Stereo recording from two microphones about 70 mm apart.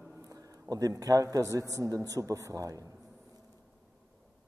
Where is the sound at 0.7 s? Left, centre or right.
Right.